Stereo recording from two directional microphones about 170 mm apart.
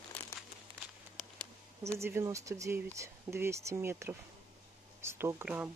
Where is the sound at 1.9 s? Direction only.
15° right (ahead or behind).